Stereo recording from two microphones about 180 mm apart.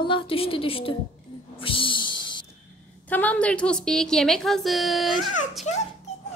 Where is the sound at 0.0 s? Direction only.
30° left (ahead or behind).